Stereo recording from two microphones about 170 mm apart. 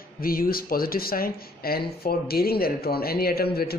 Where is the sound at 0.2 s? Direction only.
60° left (ahead or behind).